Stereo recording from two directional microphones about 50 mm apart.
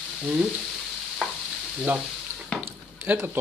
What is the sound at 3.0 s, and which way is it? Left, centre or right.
Speech, right.